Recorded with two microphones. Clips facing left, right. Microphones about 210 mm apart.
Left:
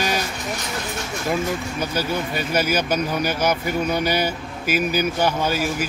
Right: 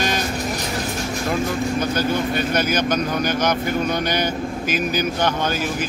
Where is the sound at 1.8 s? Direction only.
10° left (ahead or behind).